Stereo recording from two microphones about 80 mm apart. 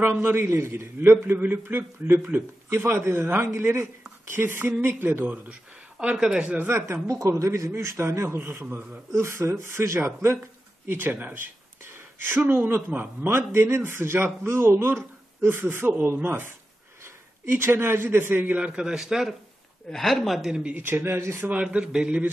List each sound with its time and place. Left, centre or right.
0.0 s a man's voice: right
6.7 s a man's voice: right
10.9 s a sound: right
12.4 s a man's voice: right; by 20.6 s centre
20.8 s a man's voice: right
21.5 s speech: centre